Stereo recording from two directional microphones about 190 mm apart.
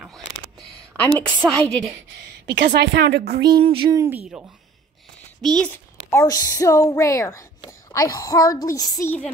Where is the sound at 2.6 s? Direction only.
60° right (ahead or behind).